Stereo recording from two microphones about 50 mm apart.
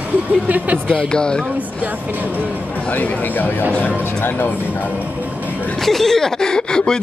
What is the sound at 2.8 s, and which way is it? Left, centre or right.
Speech, left.